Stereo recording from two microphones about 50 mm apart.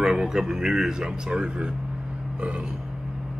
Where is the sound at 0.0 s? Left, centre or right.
Centre.